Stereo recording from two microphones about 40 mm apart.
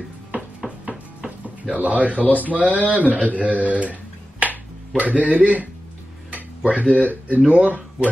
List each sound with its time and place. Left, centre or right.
0.3 s a sound: right
2.3 s speech: right
4.4 s finger snapping: right
5.2 s speech: right
6.3 s dishes: right
7.0 s speech: right